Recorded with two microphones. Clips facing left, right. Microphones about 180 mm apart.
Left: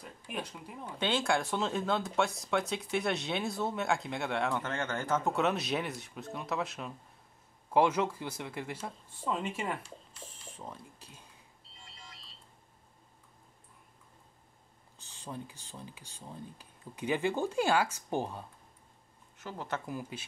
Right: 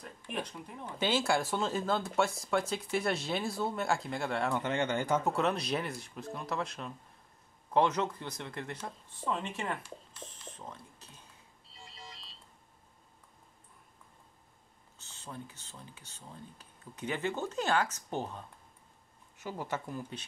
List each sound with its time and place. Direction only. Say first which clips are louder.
0.0 s speech: right 1 dB; 5° left (ahead or behind)
0.9 s speech: right 1 dB; 5° right (ahead or behind)
4.6 s speech: right 4 dB; 15° right (ahead or behind)
5.2 s speech: even; centre (ahead or behind)
10.2 s a sound: left 2 dB; 10° left (ahead or behind)
15.0 s speech: left 3 dB; 15° left (ahead or behind)
19.4 s speech: right 1 dB; 10° right (ahead or behind)
19.9 s speech: left 1 dB; 10° left (ahead or behind)